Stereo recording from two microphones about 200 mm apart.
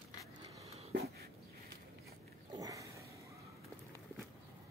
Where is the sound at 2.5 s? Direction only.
15° right (ahead or behind).